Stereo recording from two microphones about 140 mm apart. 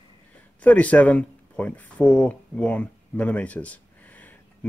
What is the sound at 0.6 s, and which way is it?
Speech, 10° left (ahead or behind).